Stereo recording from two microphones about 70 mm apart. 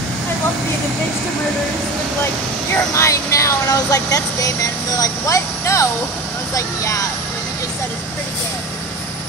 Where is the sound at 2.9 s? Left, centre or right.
Left.